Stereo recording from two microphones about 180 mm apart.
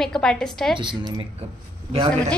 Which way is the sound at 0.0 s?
5° left (ahead or behind).